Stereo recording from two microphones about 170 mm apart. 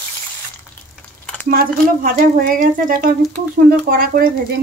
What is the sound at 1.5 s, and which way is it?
A woman's voice, 60° right (ahead or behind).